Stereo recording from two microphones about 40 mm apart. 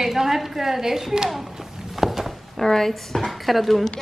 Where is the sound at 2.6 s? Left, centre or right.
Centre.